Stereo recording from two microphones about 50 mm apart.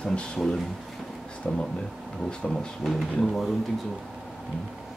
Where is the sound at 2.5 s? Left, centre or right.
Centre.